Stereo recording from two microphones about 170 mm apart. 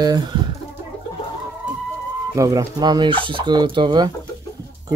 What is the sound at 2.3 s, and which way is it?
Speech, 20° right (ahead or behind).